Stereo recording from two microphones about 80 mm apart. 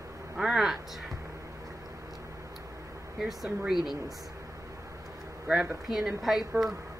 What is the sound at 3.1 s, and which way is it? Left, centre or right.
Speech, centre.